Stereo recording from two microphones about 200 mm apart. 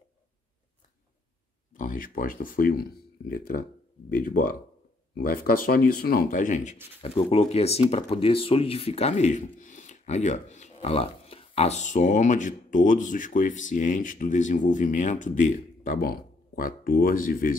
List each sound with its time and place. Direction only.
1.8 s speech: 40° left (ahead or behind)